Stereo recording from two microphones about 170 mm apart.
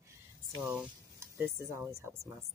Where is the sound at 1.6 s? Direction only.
15° right (ahead or behind).